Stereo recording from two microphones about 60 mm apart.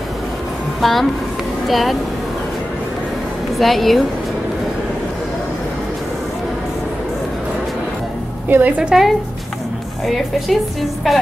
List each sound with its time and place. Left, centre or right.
0.7 s a woman's voice: centre
3.5 s a woman's voice: centre
8.5 s a woman's voice: right
10.0 s a woman's voice: centre